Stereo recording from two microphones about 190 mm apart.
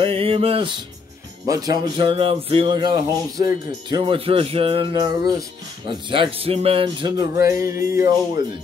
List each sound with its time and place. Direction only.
0.0 s music: 30° right (ahead or behind)